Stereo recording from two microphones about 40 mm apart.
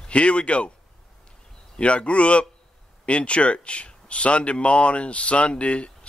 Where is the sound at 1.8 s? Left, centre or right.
Left.